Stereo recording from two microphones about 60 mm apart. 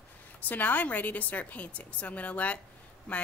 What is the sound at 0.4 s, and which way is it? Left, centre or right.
A woman's voice, left.